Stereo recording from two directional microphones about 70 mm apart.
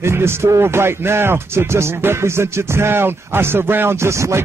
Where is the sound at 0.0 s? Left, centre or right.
Right.